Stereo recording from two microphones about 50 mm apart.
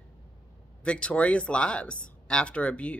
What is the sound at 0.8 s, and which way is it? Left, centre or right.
Speech, left.